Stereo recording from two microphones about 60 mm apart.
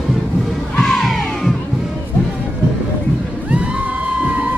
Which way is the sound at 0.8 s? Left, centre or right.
Centre.